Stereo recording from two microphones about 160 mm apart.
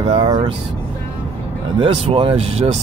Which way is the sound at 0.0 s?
35° right (ahead or behind).